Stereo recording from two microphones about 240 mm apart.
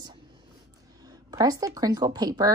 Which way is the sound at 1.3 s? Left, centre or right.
Centre.